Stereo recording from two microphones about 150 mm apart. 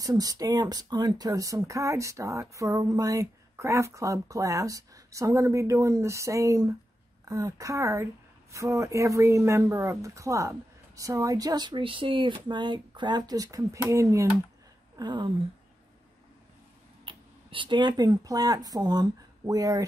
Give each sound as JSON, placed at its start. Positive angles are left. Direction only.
{"t": 0.0, "sound": "speech", "side_deg": -25}
{"t": 17.0, "sound": "speech", "side_deg": -35}